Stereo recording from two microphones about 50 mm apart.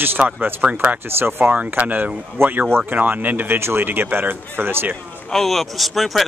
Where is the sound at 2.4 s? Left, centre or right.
Right.